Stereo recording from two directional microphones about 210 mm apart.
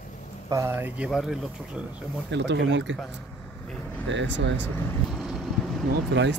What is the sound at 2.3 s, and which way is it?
Speech, 60° right (ahead or behind).